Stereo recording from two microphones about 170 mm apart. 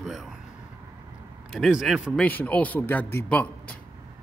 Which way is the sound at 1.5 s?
Centre (ahead or behind).